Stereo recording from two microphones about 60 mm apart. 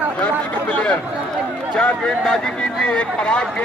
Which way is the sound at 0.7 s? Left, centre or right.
Centre.